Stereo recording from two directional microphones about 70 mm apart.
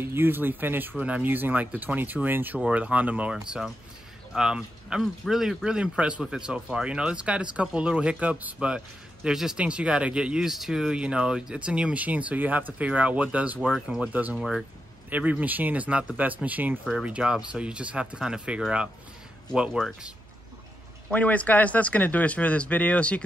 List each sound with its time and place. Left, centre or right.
0.0 s speech: right
4.4 s a man's voice: centre
14.3 s speech: centre
15.0 s speech: right
17.0 s a man's voice: centre
21.1 s speech: left